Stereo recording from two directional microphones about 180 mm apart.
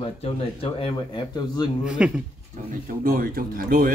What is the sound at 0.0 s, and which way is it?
Speech, 30° left (ahead or behind).